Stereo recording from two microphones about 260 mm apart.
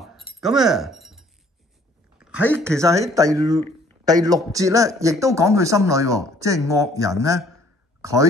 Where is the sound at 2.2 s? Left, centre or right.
Centre.